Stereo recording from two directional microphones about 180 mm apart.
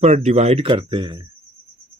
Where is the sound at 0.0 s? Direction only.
40° right (ahead or behind).